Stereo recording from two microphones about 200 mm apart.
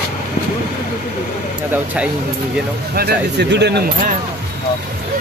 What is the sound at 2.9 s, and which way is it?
Speech, 55° right (ahead or behind).